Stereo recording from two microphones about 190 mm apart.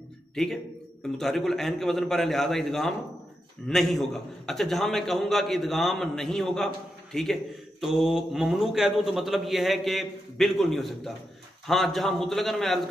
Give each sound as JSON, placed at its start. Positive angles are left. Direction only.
{"t": 1.1, "sound": "a man's voice", "side_deg": 0}